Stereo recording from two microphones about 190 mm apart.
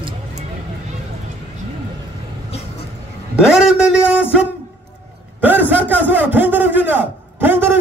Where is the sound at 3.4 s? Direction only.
5° right (ahead or behind).